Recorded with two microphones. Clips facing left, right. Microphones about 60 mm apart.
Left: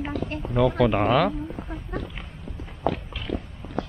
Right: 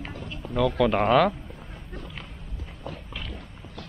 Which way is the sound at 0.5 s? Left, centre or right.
Centre.